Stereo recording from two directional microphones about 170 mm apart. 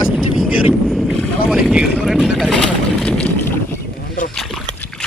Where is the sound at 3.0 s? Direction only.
5° left (ahead or behind).